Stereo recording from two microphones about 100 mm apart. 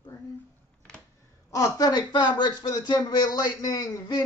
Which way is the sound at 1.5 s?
35° left (ahead or behind).